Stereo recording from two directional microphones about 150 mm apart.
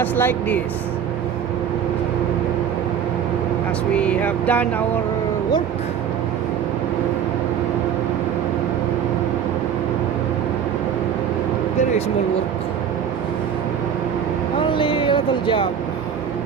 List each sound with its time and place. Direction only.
0.0 s speech: 15° left (ahead or behind)
3.9 s speech: 10° left (ahead or behind)
14.7 s speech: 35° left (ahead or behind)